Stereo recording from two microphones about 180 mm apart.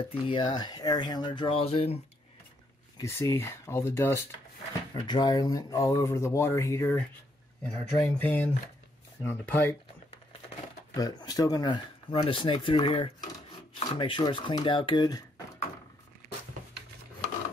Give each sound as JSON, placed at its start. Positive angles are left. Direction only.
{"t": 0.0, "sound": "speech", "side_deg": 30}
{"t": 3.0, "sound": "speech", "side_deg": 15}
{"t": 4.9, "sound": "speech", "side_deg": 25}
{"t": 11.0, "sound": "speech", "side_deg": 20}